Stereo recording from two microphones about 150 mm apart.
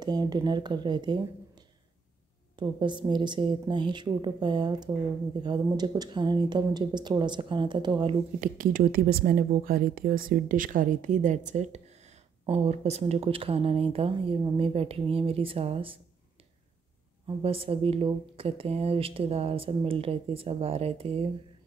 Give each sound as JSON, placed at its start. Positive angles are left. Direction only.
{"t": 0.0, "sound": "speech", "side_deg": -25}
{"t": 2.5, "sound": "speech", "side_deg": -30}
{"t": 8.4, "sound": "speech", "side_deg": -65}
{"t": 17.4, "sound": "speech", "side_deg": -40}